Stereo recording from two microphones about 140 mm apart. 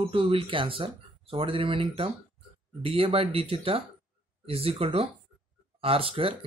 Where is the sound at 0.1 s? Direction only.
40° right (ahead or behind).